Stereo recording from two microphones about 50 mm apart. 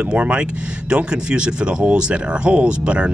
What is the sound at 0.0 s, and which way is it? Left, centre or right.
Speech, right.